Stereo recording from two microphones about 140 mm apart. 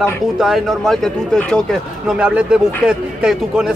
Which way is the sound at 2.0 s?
5° right (ahead or behind).